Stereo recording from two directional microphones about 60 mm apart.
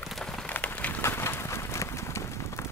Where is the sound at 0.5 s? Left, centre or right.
Left.